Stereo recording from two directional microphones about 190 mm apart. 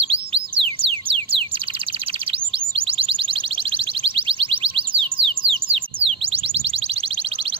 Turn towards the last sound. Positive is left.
turn(degrees=-30)  # may be behind; listen again after turning